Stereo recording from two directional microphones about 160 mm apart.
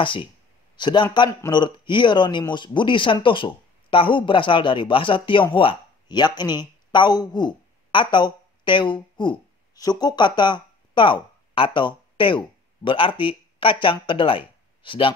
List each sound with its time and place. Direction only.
0.0 s a man's voice: 30° left (ahead or behind)